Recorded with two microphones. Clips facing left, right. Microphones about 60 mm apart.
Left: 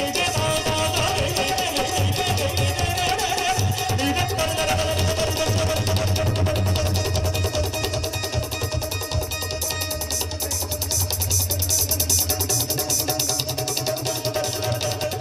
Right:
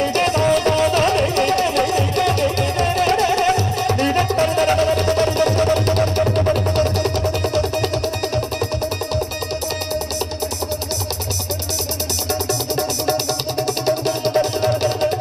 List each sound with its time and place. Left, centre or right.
0.0 s music: right
13.0 s music: right